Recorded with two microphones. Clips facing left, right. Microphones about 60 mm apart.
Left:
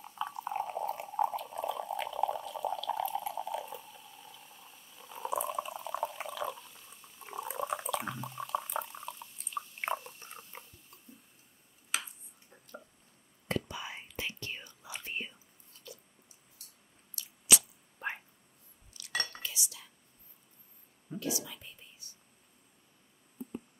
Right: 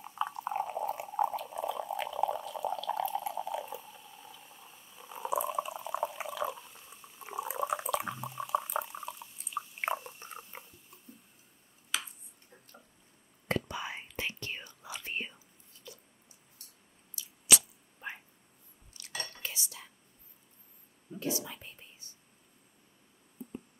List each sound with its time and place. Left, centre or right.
0.0 s boiling: centre
0.5 s a sound: centre
2.9 s water: centre
13.5 s whispering: right
17.2 s squish: left
18.9 s cutlery: right
21.2 s whispering: right